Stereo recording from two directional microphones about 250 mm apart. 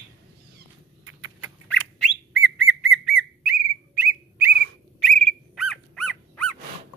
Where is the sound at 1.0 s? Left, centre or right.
Right.